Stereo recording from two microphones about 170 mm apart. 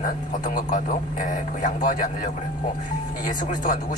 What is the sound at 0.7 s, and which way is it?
Speech, 50° left (ahead or behind).